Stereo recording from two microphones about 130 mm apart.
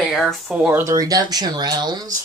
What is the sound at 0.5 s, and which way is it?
Speech, 10° right (ahead or behind).